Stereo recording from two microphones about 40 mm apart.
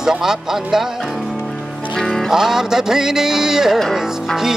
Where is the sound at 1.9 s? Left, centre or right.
Centre.